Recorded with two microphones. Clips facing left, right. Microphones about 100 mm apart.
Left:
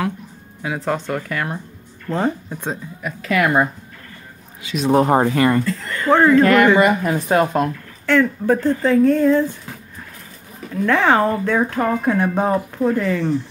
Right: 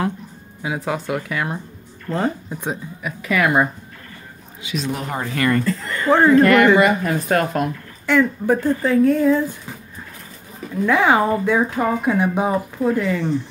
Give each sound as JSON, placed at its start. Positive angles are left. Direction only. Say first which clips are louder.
{"t": 0.6, "sound": "speech", "louder": "left 1 dB", "side_deg": -10}
{"t": 2.0, "sound": "speech", "louder": "left 1 dB", "side_deg": 0}
{"t": 4.8, "sound": "speech", "louder": "left 13 dB", "side_deg": 35}
{"t": 6.0, "sound": "speech", "louder": "even", "side_deg": -5}
{"t": 8.1, "sound": "speech", "louder": "left 1 dB", "side_deg": -10}
{"t": 10.9, "sound": "speech", "louder": "even", "side_deg": -10}